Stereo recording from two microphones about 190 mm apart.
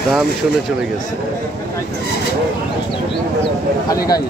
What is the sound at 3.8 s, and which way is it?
Speech, 20° left (ahead or behind).